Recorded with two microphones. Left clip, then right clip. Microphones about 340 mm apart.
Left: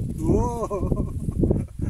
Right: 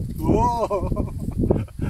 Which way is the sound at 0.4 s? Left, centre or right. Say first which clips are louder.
Right 6 dB; right.